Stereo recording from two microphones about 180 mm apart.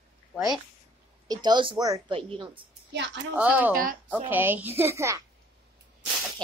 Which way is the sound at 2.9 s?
80° right.